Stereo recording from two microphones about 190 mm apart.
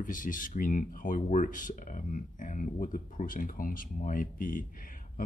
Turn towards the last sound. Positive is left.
turn(degrees=45)  # may be behind; listen again after turning